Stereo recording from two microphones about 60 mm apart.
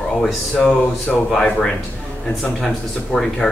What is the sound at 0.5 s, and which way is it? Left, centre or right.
Speech, left.